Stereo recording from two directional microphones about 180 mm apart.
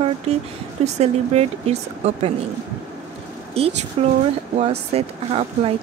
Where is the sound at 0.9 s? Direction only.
35° right (ahead or behind).